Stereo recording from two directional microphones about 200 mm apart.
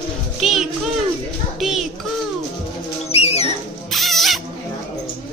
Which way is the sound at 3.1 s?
30° left (ahead or behind).